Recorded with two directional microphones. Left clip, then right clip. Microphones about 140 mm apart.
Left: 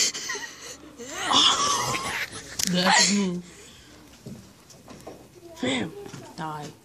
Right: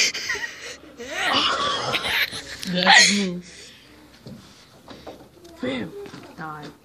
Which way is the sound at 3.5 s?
25° left (ahead or behind).